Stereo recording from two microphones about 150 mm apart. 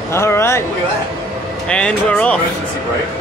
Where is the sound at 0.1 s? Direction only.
15° left (ahead or behind).